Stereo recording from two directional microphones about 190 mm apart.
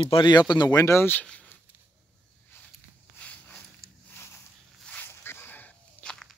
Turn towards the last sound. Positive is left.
turn(degrees=5)  # may be behind; listen again after turning